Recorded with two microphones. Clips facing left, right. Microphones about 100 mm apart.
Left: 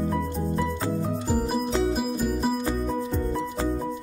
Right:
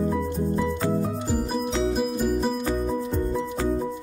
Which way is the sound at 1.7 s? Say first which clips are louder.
Even; 5° left (ahead or behind).